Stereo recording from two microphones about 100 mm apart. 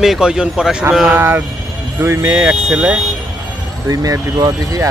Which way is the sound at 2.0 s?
25° right (ahead or behind).